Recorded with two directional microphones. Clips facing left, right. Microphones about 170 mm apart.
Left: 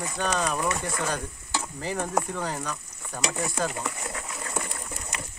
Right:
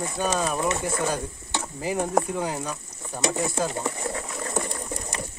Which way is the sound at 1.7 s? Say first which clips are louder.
Right 5 dB; 10° right (ahead or behind).